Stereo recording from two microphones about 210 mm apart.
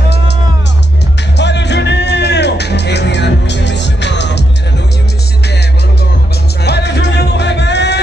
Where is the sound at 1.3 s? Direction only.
55° left (ahead or behind).